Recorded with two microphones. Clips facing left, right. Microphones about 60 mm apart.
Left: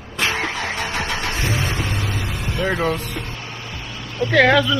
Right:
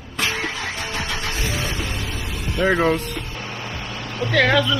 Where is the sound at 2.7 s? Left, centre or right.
Right.